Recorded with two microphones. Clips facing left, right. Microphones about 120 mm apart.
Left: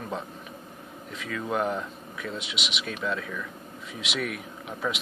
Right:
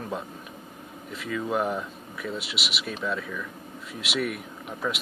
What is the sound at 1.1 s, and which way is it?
Speech, 5° right (ahead or behind).